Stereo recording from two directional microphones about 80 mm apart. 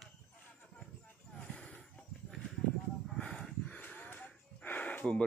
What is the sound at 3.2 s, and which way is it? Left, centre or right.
Music, centre.